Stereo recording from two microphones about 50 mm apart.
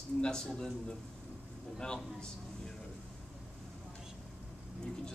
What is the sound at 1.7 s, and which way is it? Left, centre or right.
Speech, centre.